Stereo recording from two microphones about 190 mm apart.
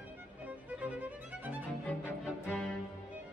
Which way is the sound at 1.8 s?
5° left (ahead or behind).